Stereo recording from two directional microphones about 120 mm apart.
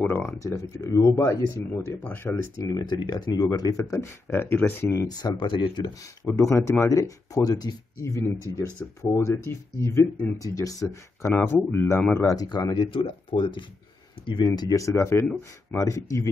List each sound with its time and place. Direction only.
0.3 s speech: 25° left (ahead or behind)
2.7 s speech: 35° left (ahead or behind); by 5.0 s 20° left (ahead or behind)
5.0 s speech: 35° left (ahead or behind)
6.5 s speech: 25° left (ahead or behind)
12.4 s speech: 35° left (ahead or behind)
12.8 s speech: 50° left (ahead or behind); by 16.3 s 25° left (ahead or behind)